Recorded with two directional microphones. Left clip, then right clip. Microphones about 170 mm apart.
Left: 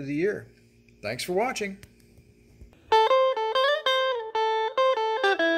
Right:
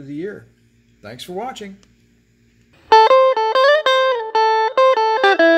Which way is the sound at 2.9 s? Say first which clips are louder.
Right 10 dB; 45° right (ahead or behind).